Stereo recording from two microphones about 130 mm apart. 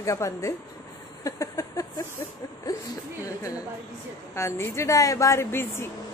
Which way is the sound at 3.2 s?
25° left (ahead or behind).